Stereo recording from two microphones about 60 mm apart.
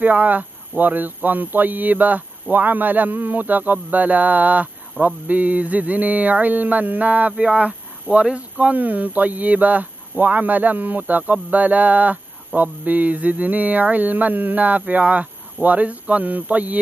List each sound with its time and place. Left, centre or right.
0.0 s mantra: right